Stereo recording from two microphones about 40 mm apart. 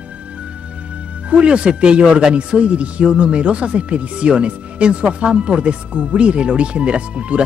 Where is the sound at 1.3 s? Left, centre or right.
Right.